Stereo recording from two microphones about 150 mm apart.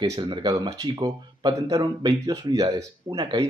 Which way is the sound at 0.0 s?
25° right (ahead or behind).